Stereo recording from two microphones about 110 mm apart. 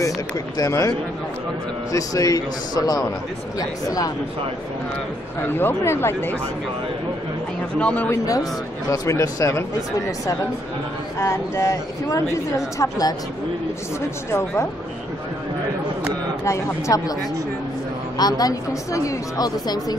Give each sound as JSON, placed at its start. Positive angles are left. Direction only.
{"t": 0.6, "sound": "a woman's voice", "side_deg": 30}
{"t": 5.4, "sound": "a woman's voice", "side_deg": 20}
{"t": 7.8, "sound": "speech", "side_deg": 15}
{"t": 8.1, "sound": "a woman's voice", "side_deg": 30}
{"t": 11.1, "sound": "a woman's voice", "side_deg": 25}
{"t": 14.3, "sound": "a woman's voice", "side_deg": 25}
{"t": 16.4, "sound": "a woman's voice", "side_deg": 25}
{"t": 18.1, "sound": "a woman's voice", "side_deg": 35}